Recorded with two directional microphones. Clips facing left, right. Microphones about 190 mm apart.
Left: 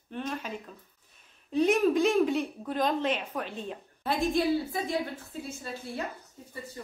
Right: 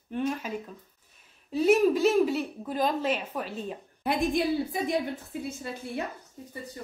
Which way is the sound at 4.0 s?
15° right (ahead or behind).